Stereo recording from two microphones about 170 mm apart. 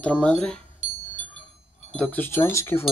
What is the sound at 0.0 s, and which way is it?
Speech, 5° left (ahead or behind).